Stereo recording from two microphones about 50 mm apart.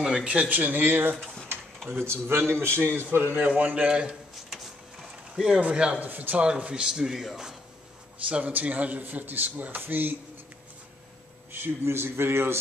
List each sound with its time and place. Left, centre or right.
0.0 s speech: centre
0.5 s a man's voice: right
3.3 s a man's voice: right
3.8 s a man's voice: centre
5.3 s a man's voice: centre
5.9 s a man's voice: right
6.3 s speech: right; by 7.5 s centre
8.3 s a man's voice: right
11.8 s a man's voice: right